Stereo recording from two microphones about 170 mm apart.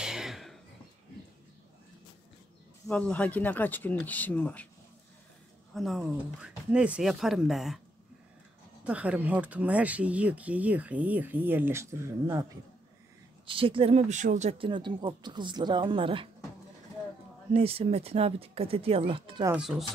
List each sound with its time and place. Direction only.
0.0 s a sound: 5° right (ahead or behind)
2.9 s speech: 5° left (ahead or behind)
5.8 s speech: centre (ahead or behind)
8.8 s speech: 10° right (ahead or behind)
13.5 s speech: 30° right (ahead or behind)
14.6 s speech: 30° right (ahead or behind)
17.5 s speech: 35° right (ahead or behind)
19.4 s speech: 10° right (ahead or behind)